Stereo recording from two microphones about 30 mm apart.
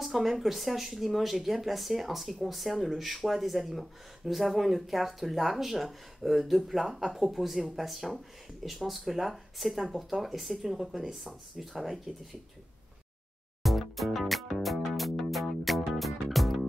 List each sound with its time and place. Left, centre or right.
0.0 s speech: centre
6.9 s speech: centre
7.2 s speech: centre
13.6 s music: centre